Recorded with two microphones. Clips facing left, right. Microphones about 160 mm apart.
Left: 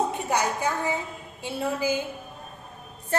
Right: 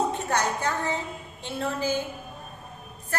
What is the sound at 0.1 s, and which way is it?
A woman's voice, 10° left (ahead or behind).